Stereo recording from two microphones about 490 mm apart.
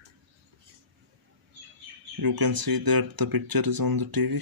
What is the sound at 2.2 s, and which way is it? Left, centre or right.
Speech, right.